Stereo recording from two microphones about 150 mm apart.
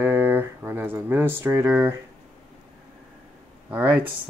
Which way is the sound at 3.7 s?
10° right (ahead or behind).